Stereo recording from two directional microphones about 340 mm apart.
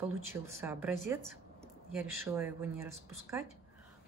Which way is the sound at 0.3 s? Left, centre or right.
Centre.